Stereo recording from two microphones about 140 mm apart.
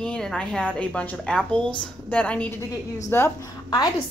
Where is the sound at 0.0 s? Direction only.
5° left (ahead or behind).